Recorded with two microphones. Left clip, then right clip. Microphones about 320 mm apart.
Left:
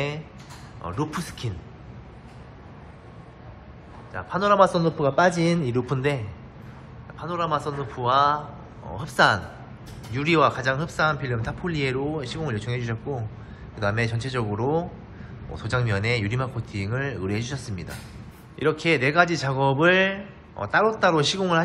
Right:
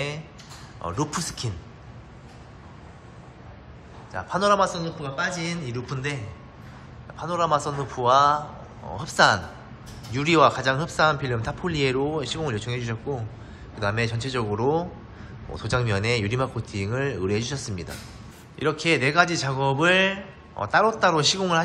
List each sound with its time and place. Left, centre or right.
0.8 s speech: centre
4.1 s speech: centre
7.2 s speech: centre